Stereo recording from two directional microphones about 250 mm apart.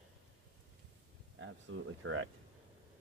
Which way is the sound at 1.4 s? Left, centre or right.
Right.